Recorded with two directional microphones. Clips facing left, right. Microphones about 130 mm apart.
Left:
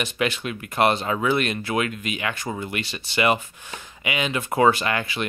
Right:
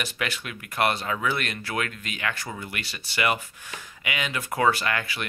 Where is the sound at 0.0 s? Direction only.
20° left (ahead or behind).